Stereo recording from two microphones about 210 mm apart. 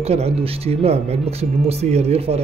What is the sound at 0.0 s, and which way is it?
Speech, 30° right (ahead or behind).